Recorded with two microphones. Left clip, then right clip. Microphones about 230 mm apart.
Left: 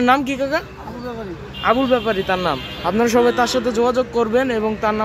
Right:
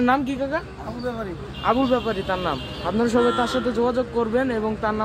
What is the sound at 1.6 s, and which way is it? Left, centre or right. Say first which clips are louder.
Speech: left 4 dB; left.